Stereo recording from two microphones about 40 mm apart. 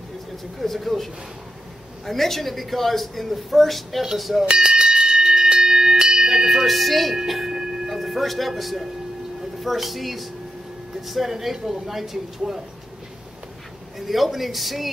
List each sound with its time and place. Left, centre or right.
0.6 s speech: centre
4.5 s bell: right; by 7.2 s centre
7.2 s music: centre
8.0 s speech: centre
13.9 s speech: centre